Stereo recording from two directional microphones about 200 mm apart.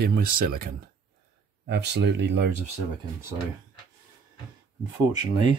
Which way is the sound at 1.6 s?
60° right (ahead or behind).